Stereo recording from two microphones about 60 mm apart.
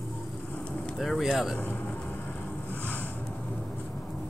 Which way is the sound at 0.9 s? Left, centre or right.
Centre.